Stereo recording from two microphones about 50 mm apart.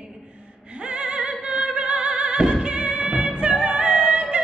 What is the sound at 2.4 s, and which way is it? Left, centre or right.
Music, centre.